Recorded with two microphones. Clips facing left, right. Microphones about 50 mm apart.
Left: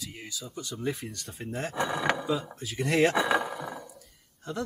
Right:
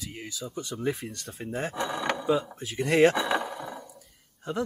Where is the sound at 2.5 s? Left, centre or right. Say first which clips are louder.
Right 2 dB; centre.